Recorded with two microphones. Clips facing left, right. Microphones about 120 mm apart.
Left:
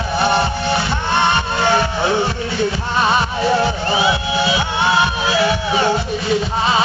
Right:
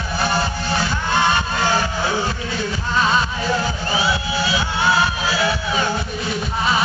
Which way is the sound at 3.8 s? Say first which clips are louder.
Left 2 dB; 25° left (ahead or behind).